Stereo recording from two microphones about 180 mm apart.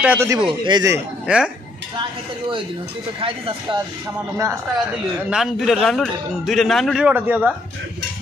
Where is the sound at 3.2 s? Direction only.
30° right (ahead or behind).